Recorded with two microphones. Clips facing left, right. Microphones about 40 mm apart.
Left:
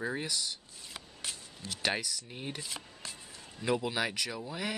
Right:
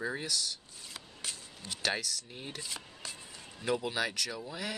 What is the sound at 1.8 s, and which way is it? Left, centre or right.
Speech, left.